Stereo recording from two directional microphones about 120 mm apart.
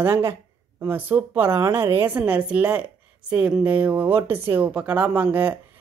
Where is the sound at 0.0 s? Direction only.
20° right (ahead or behind).